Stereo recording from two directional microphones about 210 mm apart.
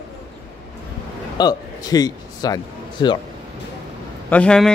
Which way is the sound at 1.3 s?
20° left (ahead or behind).